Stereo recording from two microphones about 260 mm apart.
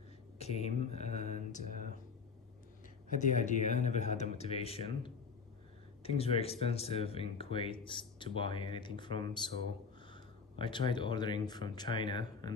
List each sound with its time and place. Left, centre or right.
0.4 s speech: left
3.1 s speech: left
10.6 s speech: centre